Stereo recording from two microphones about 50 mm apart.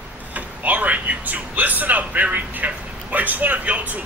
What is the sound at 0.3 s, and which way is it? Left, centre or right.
Speech, right.